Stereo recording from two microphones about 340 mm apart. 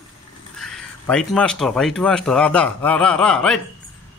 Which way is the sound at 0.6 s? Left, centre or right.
Centre.